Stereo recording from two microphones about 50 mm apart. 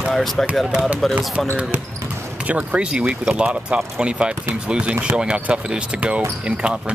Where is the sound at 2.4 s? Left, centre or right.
Right.